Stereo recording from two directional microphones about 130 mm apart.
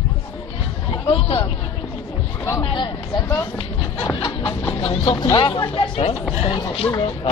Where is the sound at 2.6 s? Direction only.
35° left (ahead or behind).